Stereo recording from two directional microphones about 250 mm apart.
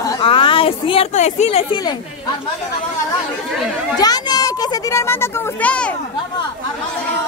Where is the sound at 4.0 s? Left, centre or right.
Centre.